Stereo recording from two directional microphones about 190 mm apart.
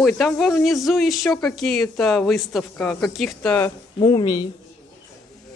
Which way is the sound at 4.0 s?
20° left (ahead or behind).